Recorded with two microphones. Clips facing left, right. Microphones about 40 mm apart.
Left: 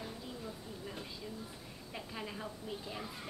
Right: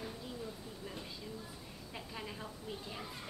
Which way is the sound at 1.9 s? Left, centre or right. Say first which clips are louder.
Left 2 dB; centre.